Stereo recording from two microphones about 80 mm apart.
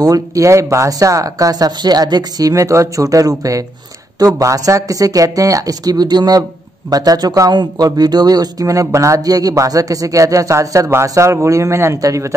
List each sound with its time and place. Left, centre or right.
0.0 s speech: right